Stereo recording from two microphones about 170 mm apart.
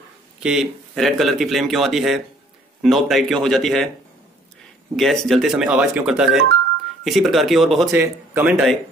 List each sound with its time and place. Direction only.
0.4 s speech: 5° right (ahead or behind)
4.9 s speech: centre (ahead or behind)
7.9 s speech: 15° right (ahead or behind)